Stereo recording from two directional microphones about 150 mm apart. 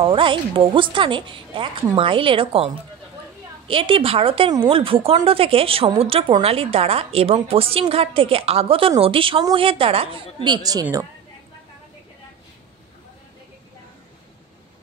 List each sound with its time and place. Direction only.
0.0 s a woman's voice: 35° right (ahead or behind)